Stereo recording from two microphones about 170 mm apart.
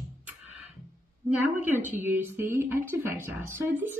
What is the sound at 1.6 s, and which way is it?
A woman's voice, 10° right (ahead or behind).